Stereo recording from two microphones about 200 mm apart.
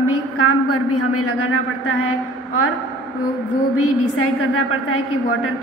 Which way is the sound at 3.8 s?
90° left.